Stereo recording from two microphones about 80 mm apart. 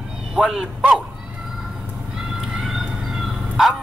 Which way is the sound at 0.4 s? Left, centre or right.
Centre.